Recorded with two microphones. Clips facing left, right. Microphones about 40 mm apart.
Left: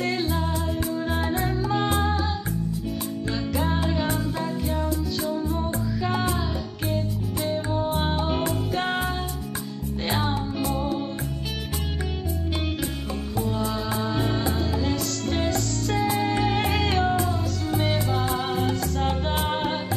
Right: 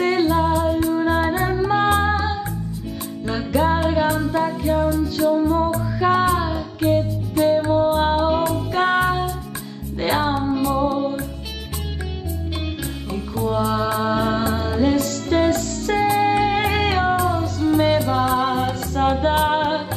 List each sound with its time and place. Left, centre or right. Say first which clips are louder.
0.0 s music: right 8 dB; centre
3.3 s music: right 8 dB; centre
5.3 s music: right 9 dB; right
8.3 s music: right 6 dB; centre
8.7 s music for children: right 11 dB; centre
10.0 s music: right 7 dB; centre
13.7 s music: right 7 dB; centre